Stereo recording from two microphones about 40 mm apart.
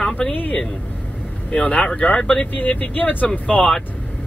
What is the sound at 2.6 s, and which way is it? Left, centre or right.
Speech, left.